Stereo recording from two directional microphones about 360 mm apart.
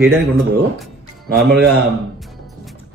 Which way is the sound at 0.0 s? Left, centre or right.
Centre.